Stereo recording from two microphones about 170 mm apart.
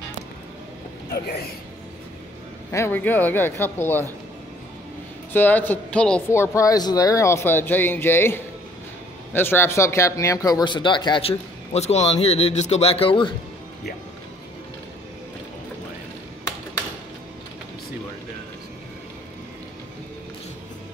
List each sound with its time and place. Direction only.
2.7 s speech: 15° left (ahead or behind)
5.3 s speech: 10° left (ahead or behind); by 13.3 s 30° left (ahead or behind)